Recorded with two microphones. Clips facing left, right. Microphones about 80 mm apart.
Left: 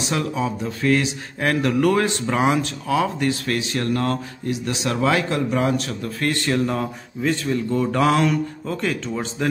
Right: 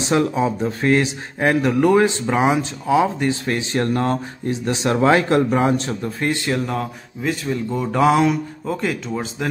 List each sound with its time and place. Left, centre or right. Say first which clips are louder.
0.1 s speech: right 6 dB; right
1.4 s speech: right 2 dB; centre
6.5 s speech: left 1 dB; centre